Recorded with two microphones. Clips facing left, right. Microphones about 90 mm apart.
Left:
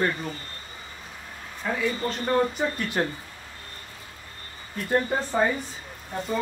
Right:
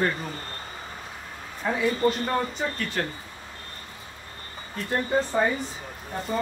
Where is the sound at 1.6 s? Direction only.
20° right (ahead or behind).